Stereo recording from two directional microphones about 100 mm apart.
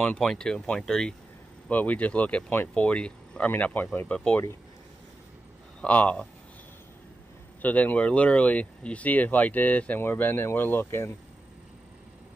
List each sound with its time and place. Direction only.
0.0 s speech: 10° left (ahead or behind)
5.8 s speech: 15° left (ahead or behind)
7.6 s speech: 15° left (ahead or behind)